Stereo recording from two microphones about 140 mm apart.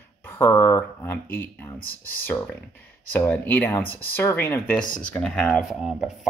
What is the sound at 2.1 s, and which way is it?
Speech, 15° left (ahead or behind).